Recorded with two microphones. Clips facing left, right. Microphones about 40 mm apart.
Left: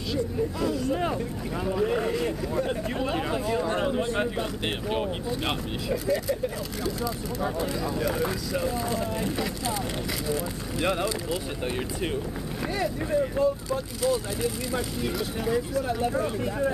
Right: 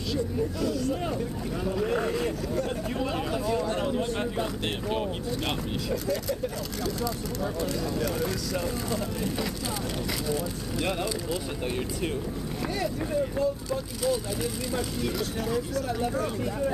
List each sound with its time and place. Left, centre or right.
0.1 s speech: centre
7.6 s speech: centre
12.7 s speech: centre